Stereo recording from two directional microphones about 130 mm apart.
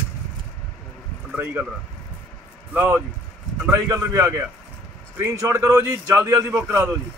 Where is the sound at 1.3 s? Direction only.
20° right (ahead or behind).